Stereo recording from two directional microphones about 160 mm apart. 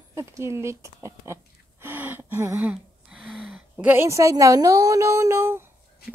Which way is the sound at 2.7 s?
5° right (ahead or behind).